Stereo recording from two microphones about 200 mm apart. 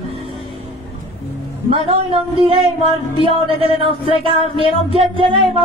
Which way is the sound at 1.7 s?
30° right (ahead or behind).